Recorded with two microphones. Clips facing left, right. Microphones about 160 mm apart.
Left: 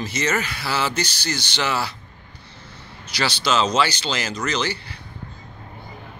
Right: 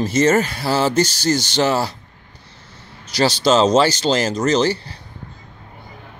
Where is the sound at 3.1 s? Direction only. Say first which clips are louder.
Right 7 dB; 40° right (ahead or behind).